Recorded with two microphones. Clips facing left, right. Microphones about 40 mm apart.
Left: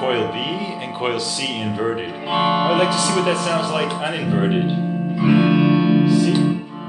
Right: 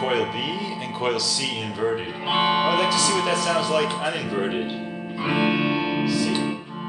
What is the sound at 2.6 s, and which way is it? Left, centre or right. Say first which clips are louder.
Speech: left 3 dB; left.